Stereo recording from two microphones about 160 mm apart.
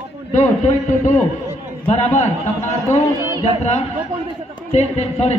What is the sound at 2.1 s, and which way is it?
Speech, 45° left (ahead or behind).